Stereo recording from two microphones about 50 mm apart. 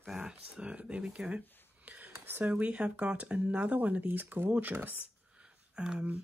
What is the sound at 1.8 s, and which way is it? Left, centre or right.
Whispering, right.